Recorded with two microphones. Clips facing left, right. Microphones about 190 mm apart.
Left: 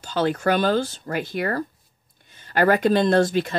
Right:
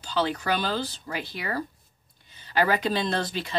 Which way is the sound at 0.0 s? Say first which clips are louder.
Left 5 dB; 50° left (ahead or behind).